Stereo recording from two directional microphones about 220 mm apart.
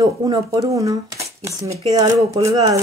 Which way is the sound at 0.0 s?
20° right (ahead or behind).